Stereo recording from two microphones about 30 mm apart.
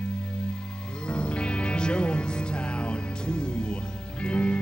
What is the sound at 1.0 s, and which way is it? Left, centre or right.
Music, left.